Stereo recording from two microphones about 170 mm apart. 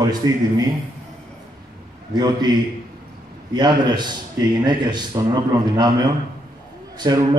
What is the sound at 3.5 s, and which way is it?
A man's voice, 25° right (ahead or behind).